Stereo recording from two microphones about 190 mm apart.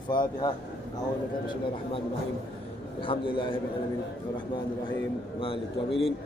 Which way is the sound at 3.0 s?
25° left (ahead or behind).